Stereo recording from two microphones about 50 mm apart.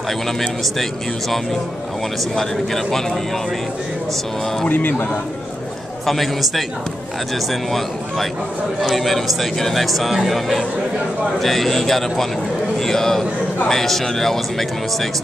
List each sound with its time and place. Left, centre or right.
2.3 s speech: centre
4.6 s speech: left
6.0 s a man's voice: centre
8.8 s a man's voice: centre